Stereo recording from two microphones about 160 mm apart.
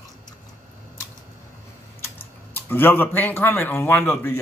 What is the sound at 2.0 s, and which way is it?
Speech, 15° left (ahead or behind).